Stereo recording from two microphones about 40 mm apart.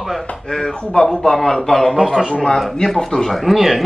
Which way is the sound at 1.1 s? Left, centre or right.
Centre.